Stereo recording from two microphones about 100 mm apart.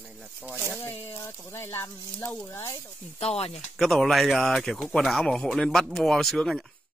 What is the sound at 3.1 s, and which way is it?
Speech, 80° left.